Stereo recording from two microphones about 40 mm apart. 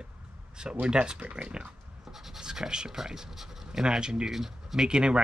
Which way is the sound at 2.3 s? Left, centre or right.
Centre.